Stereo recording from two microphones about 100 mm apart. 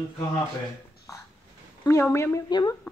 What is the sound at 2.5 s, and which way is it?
Speech, 45° left (ahead or behind).